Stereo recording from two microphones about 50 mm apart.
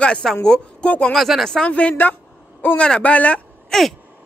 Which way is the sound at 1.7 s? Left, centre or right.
Left.